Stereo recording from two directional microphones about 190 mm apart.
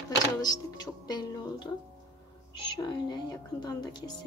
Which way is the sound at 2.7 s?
25° left (ahead or behind).